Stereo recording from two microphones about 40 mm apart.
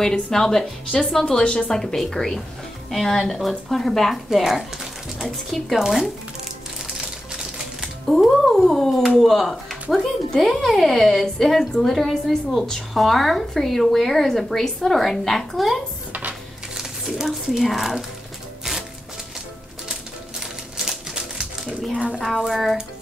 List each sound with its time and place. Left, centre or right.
0.0 s speech: centre
1.4 s a woman's voice: left
1.7 s speech: centre
3.3 s speech: centre
7.0 s music: centre
8.2 s speech: centre
16.1 s a sound: right
16.7 s speech: centre
18.6 s music: centre
19.9 s typewriter: centre
22.5 s speech: centre